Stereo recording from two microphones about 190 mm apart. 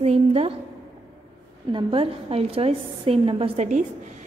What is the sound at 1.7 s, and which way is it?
A woman's voice, 25° right (ahead or behind).